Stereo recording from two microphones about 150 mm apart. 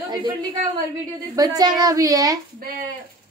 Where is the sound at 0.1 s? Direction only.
30° right (ahead or behind).